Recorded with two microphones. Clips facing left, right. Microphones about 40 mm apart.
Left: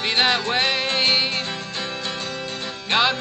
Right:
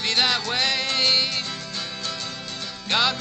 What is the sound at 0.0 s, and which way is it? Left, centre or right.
Music, left.